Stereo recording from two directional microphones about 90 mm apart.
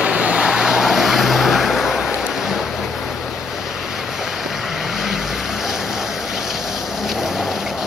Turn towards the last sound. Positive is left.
turn(degrees=-5)  # may be behind; listen again after turning